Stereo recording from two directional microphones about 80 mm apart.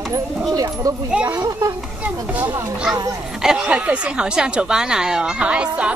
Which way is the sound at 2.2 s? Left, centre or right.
Centre.